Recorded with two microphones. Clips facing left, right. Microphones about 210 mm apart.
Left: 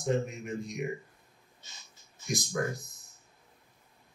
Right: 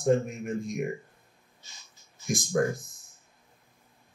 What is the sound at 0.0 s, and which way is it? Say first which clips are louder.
Speech: right 5 dB; 50° right (ahead or behind).